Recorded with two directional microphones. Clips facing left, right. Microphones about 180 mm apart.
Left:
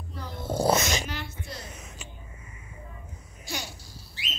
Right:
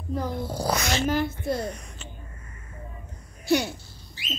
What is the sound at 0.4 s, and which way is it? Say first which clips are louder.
Dog: left 3 dB; 25° left (ahead or behind).